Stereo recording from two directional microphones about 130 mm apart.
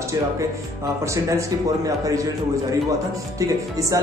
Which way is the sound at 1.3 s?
25° right (ahead or behind).